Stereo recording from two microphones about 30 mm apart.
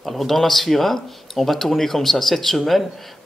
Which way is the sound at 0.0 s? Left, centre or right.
Centre.